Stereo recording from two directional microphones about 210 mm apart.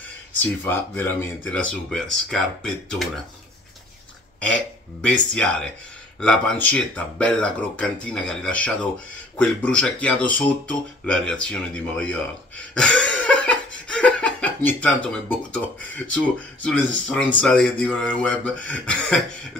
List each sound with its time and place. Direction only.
0.4 s speech: 10° left (ahead or behind)
5.0 s speech: 5° left (ahead or behind)
16.6 s speech: 5° left (ahead or behind)